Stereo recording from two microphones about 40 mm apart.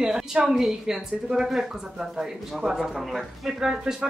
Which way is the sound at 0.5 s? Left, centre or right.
Centre.